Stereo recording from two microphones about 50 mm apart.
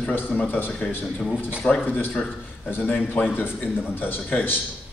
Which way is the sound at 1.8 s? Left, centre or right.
Left.